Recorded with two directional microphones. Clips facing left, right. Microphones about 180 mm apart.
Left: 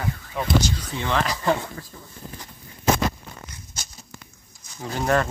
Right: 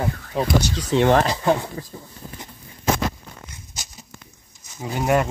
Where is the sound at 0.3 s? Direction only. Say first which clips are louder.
Right 6 dB; 35° right (ahead or behind).